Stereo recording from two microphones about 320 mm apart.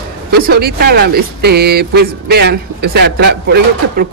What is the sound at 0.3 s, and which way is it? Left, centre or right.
Speech, right.